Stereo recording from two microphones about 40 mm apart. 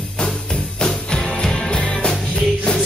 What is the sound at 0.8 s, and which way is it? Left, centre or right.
Music, centre.